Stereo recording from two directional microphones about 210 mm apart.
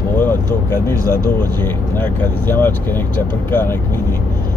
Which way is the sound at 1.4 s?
10° left (ahead or behind).